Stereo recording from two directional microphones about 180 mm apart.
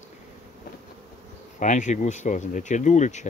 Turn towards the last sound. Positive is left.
turn(degrees=40)  # may be behind; listen again after turning